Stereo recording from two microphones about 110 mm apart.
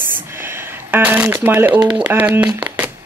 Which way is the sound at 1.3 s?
20° right (ahead or behind).